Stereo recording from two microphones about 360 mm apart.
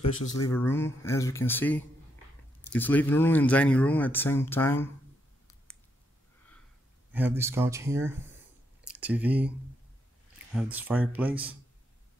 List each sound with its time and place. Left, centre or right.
0.0 s speech: left
0.4 s speech: centre
7.1 s speech: centre
10.5 s speech: centre